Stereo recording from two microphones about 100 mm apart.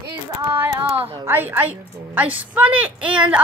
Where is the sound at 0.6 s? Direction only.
20° right (ahead or behind).